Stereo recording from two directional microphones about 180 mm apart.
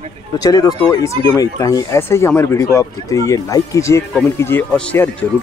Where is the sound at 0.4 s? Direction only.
20° left (ahead or behind).